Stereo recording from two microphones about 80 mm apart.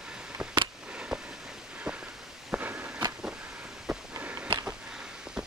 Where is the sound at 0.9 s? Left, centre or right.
Centre.